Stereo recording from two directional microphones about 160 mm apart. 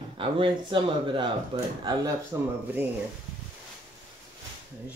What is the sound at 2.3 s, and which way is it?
Speech, 20° right (ahead or behind).